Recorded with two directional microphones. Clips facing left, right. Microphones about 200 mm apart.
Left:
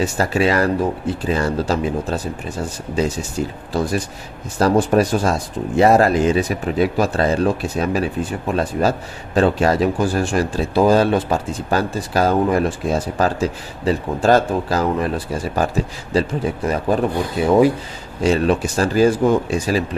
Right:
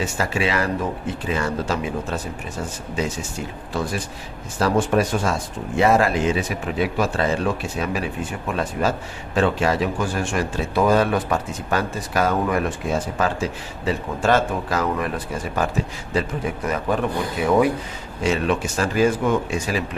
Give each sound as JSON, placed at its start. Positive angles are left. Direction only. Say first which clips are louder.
{"t": 0.0, "sound": "speech", "louder": "left 5 dB", "side_deg": 40}